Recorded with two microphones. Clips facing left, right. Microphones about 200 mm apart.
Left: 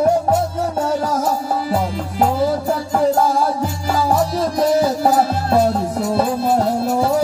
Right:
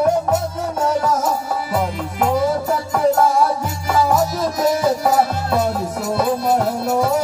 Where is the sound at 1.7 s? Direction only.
35° left (ahead or behind).